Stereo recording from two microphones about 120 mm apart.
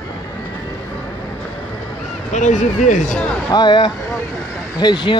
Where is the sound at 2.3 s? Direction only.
90° left.